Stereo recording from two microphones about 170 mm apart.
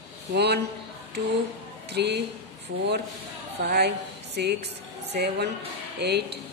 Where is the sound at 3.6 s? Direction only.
70° right (ahead or behind).